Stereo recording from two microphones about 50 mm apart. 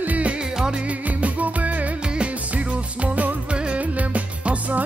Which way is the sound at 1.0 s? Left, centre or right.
Right.